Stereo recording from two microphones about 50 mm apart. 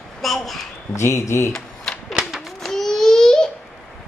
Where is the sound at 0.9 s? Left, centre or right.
Left.